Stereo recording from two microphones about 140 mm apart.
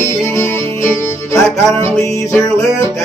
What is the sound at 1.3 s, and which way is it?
Music, 20° left (ahead or behind).